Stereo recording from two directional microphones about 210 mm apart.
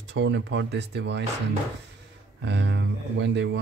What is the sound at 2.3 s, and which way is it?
Speech, 55° right (ahead or behind).